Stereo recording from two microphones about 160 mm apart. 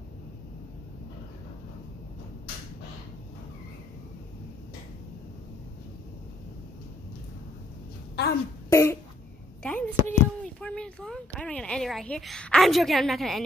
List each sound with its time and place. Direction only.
8.2 s speech: 90° left
8.6 s throat clearing: 20° left (ahead or behind)
9.6 s speech: 10° left (ahead or behind)